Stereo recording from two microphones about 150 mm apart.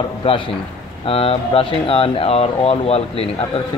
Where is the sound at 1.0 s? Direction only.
40° left (ahead or behind).